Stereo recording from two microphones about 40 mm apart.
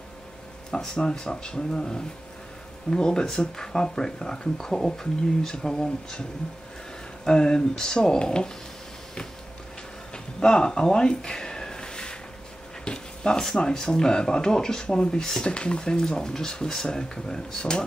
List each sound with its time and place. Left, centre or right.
0.7 s speech: centre
7.2 s speech: centre
10.1 s a sound: left
12.8 s speech: left